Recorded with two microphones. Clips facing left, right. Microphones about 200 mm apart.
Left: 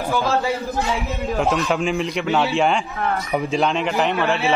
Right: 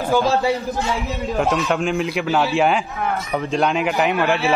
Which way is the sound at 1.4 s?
Centre (ahead or behind).